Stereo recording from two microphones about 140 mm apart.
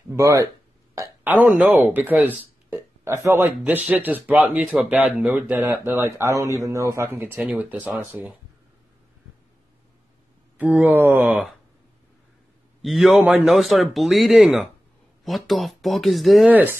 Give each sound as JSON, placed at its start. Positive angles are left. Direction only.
{"t": 0.1, "sound": "speech", "side_deg": -20}
{"t": 7.3, "sound": "speech", "side_deg": -5}
{"t": 10.6, "sound": "speech", "side_deg": -10}
{"t": 12.8, "sound": "speech", "side_deg": 0}